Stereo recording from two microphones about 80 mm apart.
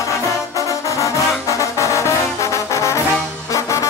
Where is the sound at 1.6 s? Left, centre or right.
Left.